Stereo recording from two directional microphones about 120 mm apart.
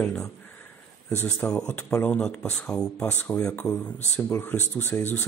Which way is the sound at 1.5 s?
20° left (ahead or behind).